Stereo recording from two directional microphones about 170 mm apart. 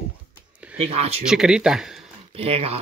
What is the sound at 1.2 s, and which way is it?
Speech, 5° right (ahead or behind).